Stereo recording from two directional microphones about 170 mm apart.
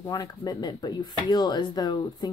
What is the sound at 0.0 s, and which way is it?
Speech, 20° left (ahead or behind).